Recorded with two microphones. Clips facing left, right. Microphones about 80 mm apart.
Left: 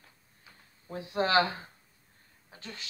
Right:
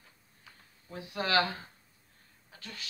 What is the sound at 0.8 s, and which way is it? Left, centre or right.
Speech, left.